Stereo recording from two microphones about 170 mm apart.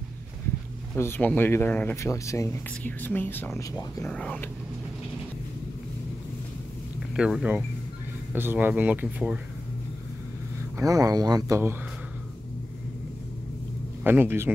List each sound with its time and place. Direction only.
0.9 s speech: 15° left (ahead or behind)
7.2 s speech: 5° right (ahead or behind)
10.8 s speech: 20° right (ahead or behind)
14.0 s speech: 10° right (ahead or behind)